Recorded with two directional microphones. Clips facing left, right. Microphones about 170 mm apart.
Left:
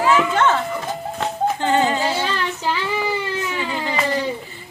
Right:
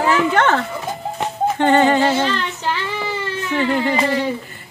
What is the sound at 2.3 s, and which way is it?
Child singing, 10° left (ahead or behind).